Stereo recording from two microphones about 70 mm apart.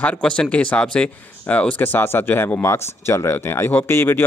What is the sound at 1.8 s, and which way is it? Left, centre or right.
Speech, left.